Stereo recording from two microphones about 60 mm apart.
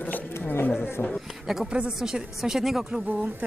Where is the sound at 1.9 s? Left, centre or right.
Centre.